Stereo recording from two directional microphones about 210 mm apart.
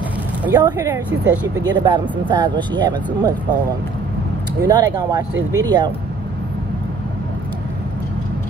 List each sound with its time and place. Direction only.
0.5 s speech: 15° right (ahead or behind)
1.6 s speech: 20° right (ahead or behind)
4.6 s speech: 20° right (ahead or behind)